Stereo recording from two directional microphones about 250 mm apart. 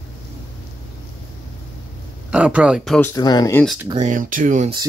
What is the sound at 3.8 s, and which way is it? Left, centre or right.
Speech, right.